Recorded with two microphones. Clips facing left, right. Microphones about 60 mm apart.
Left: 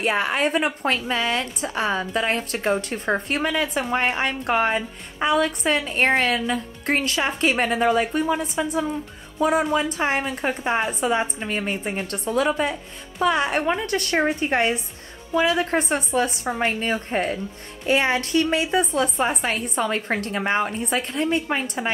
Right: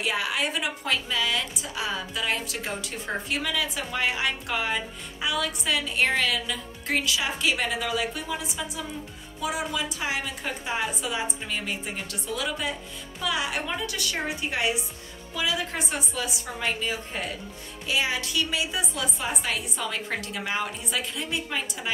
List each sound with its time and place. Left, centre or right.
0.0 s a woman's voice: left